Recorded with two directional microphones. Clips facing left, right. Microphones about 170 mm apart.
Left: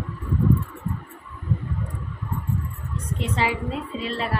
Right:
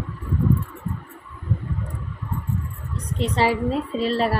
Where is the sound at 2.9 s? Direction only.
35° right (ahead or behind).